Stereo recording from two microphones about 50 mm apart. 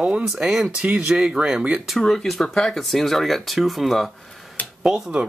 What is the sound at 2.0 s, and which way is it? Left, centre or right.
Speech, centre.